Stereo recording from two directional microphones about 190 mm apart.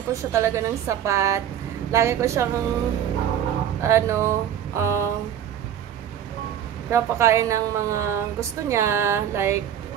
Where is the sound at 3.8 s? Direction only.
15° right (ahead or behind).